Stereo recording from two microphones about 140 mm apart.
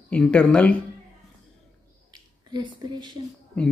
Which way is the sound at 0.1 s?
10° left (ahead or behind).